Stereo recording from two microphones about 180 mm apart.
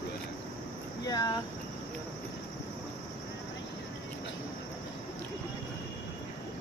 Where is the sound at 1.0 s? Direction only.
20° left (ahead or behind).